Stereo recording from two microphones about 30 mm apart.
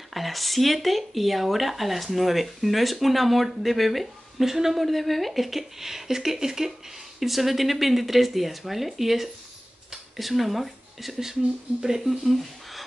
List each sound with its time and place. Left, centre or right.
0.1 s speech: centre
4.7 s speech: centre